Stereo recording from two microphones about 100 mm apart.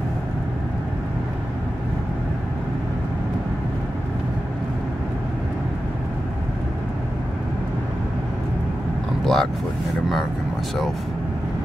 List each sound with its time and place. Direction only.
9.2 s vehicle: 5° left (ahead or behind)